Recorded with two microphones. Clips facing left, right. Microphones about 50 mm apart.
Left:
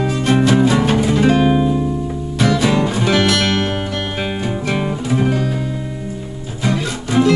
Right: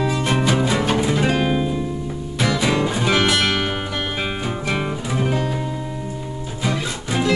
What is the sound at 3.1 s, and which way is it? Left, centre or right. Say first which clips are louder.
Music: left 2 dB; centre.